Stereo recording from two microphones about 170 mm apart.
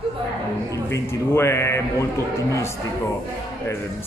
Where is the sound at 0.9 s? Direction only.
15° left (ahead or behind).